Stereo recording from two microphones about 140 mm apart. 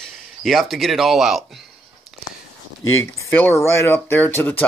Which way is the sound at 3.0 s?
15° left (ahead or behind).